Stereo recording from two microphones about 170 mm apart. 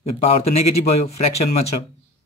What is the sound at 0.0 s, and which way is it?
Speech, 35° left (ahead or behind).